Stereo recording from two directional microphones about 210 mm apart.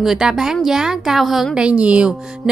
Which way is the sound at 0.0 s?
Centre (ahead or behind).